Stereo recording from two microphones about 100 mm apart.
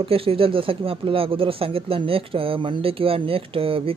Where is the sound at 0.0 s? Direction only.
70° right (ahead or behind).